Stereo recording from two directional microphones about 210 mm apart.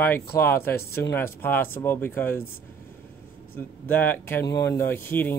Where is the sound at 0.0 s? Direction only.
10° left (ahead or behind).